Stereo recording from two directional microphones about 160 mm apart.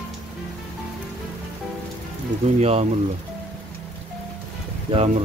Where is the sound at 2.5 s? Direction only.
40° right (ahead or behind).